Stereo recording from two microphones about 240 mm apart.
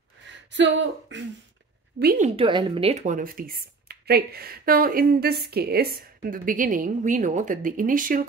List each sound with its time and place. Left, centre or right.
0.3 s speech: right
2.0 s a woman's voice: right